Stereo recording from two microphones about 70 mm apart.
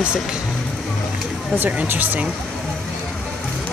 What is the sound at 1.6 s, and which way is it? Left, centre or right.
Speech, right.